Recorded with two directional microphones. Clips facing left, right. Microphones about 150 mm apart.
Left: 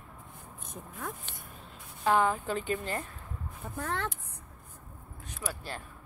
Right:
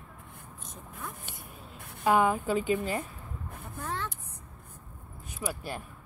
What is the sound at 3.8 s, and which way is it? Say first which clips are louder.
Speech: left 2 dB; 60° left (ahead or behind).